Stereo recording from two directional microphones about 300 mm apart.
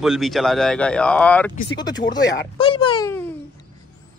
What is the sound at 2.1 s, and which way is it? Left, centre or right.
Speech, left.